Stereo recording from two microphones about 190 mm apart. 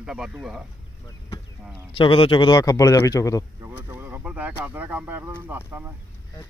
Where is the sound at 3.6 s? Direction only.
10° right (ahead or behind).